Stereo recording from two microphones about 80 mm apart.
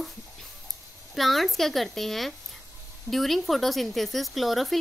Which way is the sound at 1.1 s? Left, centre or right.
Centre.